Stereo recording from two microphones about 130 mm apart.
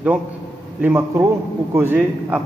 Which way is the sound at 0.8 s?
20° right (ahead or behind).